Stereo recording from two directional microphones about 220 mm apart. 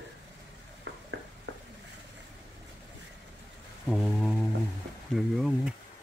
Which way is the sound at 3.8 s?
Centre (ahead or behind).